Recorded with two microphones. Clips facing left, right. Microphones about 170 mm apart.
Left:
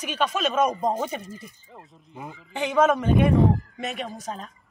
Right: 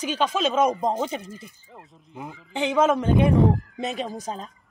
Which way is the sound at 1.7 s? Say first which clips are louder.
Right 1 dB; centre (ahead or behind).